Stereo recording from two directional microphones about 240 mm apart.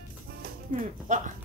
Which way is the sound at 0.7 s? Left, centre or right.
Right.